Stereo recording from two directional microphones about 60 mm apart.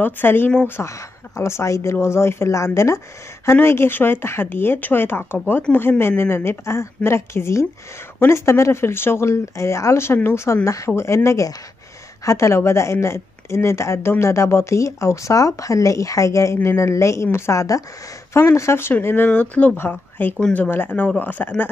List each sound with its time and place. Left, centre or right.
0.0 s speech: left
0.8 s speech: left
3.6 s speech: left
18.3 s speech: left
18.9 s speech: left